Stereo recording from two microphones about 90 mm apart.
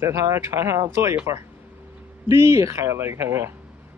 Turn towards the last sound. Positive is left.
turn(degrees=-25)  # may be behind; listen again after turning